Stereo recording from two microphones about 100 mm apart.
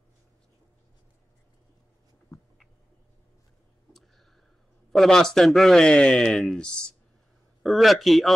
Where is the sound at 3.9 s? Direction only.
Centre (ahead or behind).